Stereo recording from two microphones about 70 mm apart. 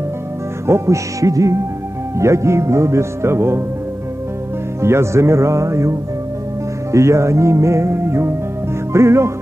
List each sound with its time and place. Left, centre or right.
0.7 s music: right
2.1 s speech: right
4.8 s music: right
8.9 s speech: right